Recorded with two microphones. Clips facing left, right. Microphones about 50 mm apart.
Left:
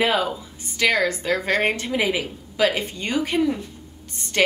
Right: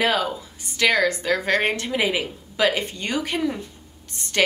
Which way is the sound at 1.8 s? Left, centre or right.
Centre.